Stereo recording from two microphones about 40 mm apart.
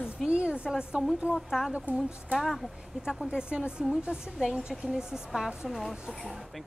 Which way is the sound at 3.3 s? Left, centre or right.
Right.